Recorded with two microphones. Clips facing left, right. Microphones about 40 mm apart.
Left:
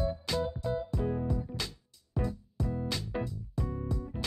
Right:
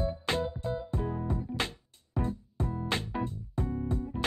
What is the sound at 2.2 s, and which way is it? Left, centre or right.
Music, right.